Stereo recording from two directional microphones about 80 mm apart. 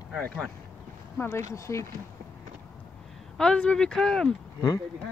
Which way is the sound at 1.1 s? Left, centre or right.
Left.